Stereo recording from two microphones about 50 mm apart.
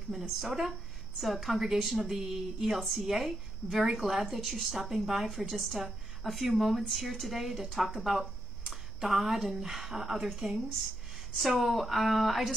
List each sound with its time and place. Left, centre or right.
0.1 s speech: centre